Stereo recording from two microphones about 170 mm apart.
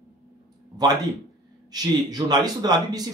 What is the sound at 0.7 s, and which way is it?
Speech, 25° right (ahead or behind).